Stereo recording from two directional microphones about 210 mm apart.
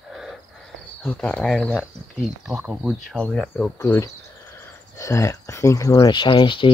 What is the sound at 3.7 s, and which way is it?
Speech, 15° left (ahead or behind).